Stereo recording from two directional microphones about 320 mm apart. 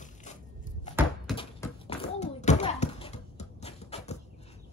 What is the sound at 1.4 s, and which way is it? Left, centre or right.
Bouncing, centre.